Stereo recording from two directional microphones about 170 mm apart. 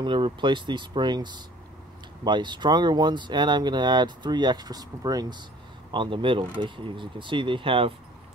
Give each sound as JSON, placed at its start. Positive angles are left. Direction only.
{"t": 0.0, "sound": "speech", "side_deg": -30}